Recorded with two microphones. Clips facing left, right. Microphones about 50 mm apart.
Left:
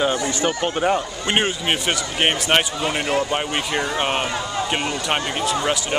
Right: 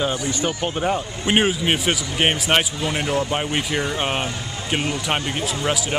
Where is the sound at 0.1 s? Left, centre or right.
Left.